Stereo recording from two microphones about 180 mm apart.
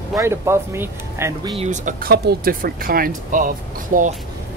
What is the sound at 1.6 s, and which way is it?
Speech, 45° right (ahead or behind).